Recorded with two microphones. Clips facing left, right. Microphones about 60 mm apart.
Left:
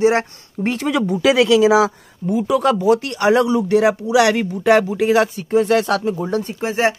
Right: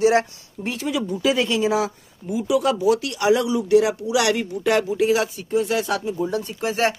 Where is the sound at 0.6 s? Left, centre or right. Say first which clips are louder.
Left 6 dB; left.